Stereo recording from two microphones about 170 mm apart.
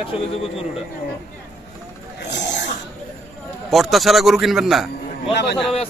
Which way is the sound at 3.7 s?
Centre (ahead or behind).